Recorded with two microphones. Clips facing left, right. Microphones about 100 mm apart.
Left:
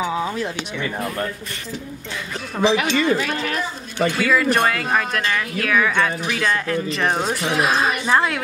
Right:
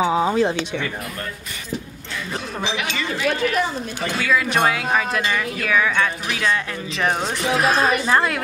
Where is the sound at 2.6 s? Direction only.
40° left (ahead or behind).